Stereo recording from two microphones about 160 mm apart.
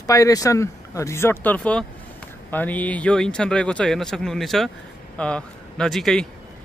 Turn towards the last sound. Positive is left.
turn(degrees=0)  # may be behind; listen again after turning